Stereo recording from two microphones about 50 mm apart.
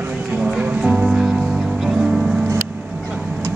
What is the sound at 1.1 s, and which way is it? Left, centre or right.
Music, centre.